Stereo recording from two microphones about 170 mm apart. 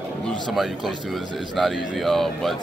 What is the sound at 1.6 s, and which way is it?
Speech, centre (ahead or behind).